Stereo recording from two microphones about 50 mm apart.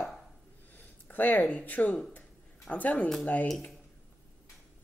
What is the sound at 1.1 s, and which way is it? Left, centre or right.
Speech, left.